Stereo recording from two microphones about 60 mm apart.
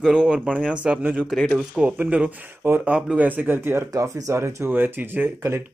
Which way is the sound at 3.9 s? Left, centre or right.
Right.